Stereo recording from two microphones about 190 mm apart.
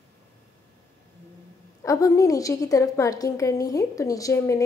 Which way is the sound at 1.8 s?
15° left (ahead or behind).